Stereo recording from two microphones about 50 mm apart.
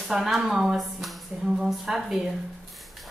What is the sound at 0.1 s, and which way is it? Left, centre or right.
Speech, centre.